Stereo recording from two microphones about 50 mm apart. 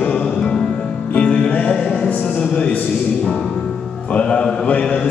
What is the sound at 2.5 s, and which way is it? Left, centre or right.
Speech, left.